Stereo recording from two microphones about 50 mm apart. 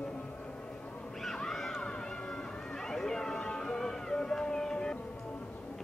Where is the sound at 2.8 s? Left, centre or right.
Centre.